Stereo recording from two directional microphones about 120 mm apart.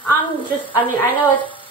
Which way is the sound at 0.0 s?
15° left (ahead or behind).